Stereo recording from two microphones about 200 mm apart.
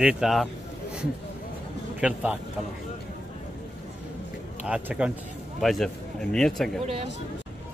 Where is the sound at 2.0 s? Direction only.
5° right (ahead or behind).